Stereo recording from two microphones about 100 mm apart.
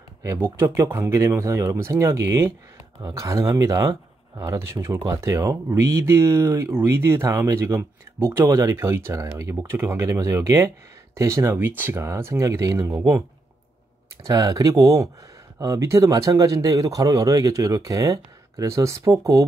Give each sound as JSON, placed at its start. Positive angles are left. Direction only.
{"t": 0.2, "sound": "speech", "side_deg": -30}
{"t": 14.2, "sound": "speech", "side_deg": -35}